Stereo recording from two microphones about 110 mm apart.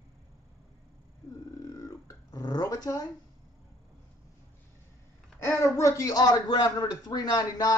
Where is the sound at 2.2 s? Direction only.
40° left (ahead or behind).